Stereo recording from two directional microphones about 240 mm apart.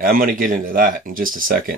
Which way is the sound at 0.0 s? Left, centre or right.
Right.